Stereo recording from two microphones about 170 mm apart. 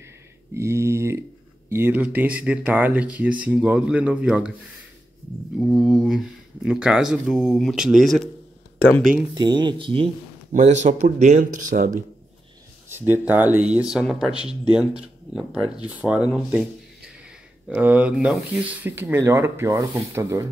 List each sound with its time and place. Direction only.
0.6 s speech: 15° right (ahead or behind)
5.6 s speech: centre (ahead or behind)
9.3 s speech: 25° right (ahead or behind)
10.5 s speech: 45° right (ahead or behind)
12.9 s speech: 10° right (ahead or behind)
17.6 s speech: 10° right (ahead or behind)